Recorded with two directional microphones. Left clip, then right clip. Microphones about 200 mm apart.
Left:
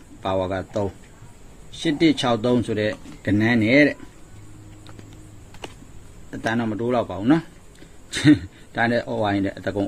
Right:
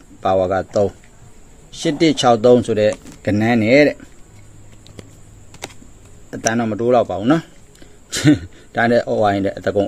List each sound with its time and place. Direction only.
0.2 s speech: 45° right (ahead or behind)
6.3 s speech: 40° right (ahead or behind)